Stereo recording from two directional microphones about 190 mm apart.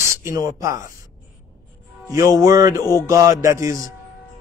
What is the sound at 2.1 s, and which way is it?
Speech, 20° right (ahead or behind).